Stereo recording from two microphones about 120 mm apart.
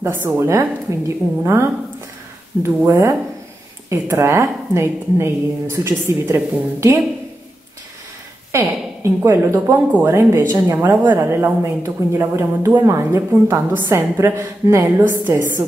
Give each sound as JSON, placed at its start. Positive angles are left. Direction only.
{"t": 0.0, "sound": "a woman's voice", "side_deg": -20}
{"t": 8.5, "sound": "a woman's voice", "side_deg": -25}